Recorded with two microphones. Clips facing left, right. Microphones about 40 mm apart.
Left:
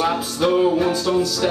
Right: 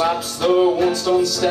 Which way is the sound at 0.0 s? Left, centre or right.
Centre.